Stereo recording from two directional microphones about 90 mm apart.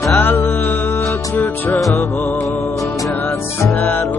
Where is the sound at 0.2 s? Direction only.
20° left (ahead or behind).